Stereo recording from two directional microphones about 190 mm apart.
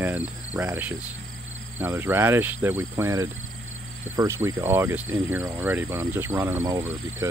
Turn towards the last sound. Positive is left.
turn(degrees=-15)  # may be behind; listen again after turning